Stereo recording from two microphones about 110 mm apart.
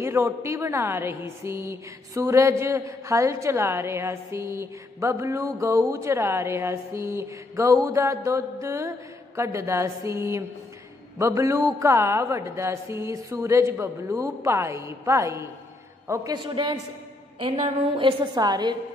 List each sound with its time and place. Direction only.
0.0 s a woman's voice: 25° right (ahead or behind)
16.4 s a woman's voice: 45° right (ahead or behind)
17.9 s a woman's voice: 45° right (ahead or behind)